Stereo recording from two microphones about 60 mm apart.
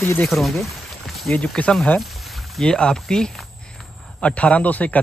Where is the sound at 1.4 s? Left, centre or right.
Centre.